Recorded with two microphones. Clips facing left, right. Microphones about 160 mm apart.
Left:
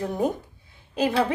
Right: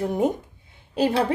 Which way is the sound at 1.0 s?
30° right (ahead or behind).